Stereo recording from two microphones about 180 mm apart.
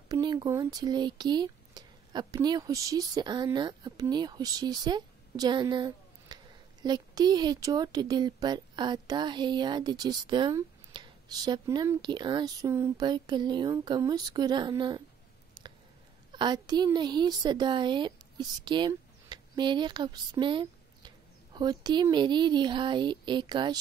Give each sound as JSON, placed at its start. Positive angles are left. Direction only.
{"t": 0.1, "sound": "speech", "side_deg": -25}
{"t": 15.6, "sound": "a sound", "side_deg": -25}
{"t": 16.3, "sound": "a woman's voice", "side_deg": -25}